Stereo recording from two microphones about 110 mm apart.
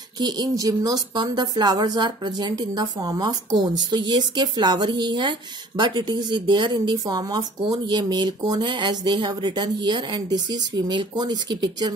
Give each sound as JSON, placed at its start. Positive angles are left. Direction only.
{"t": 0.2, "sound": "speech", "side_deg": -35}